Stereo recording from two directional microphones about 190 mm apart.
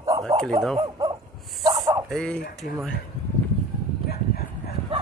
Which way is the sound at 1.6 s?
20° right (ahead or behind).